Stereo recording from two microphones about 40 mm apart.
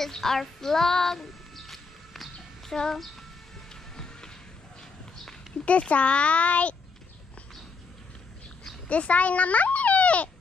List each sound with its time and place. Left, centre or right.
0.0 s child singing: centre
2.7 s speech: centre
3.9 s music: centre
5.7 s speech: left
8.8 s a child's voice: left